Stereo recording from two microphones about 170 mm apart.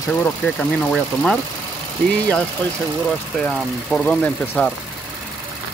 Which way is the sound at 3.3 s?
5° left (ahead or behind).